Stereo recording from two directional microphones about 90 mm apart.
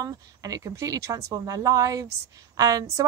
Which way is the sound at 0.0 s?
40° right (ahead or behind).